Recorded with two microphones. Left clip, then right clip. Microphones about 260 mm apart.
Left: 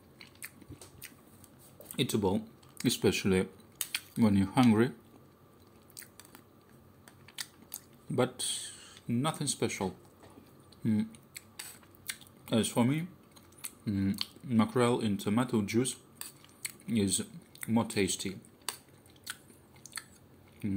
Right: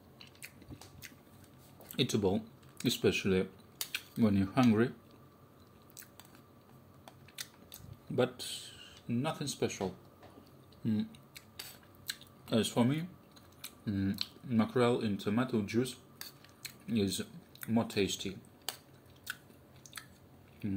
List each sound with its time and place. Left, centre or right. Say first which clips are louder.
1.9 s speech: left 1 dB; centre
8.2 s speech: left 2 dB; centre
10.8 s a sound: left 3 dB; centre
13.6 s speech: left 2 dB; centre
19.8 s biting: left 4 dB; centre
20.6 s speech: left 3 dB; centre